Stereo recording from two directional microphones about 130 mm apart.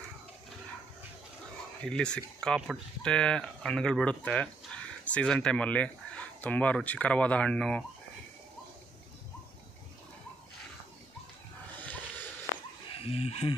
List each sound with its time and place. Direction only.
1.9 s speech: 5° left (ahead or behind)
11.7 s a sound: 15° left (ahead or behind)
12.9 s speech: 50° left (ahead or behind)